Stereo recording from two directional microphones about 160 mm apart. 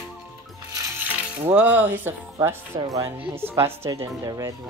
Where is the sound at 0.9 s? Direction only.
10° right (ahead or behind).